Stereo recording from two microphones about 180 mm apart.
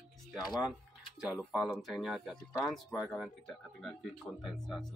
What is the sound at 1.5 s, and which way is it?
A man's voice, 5° left (ahead or behind).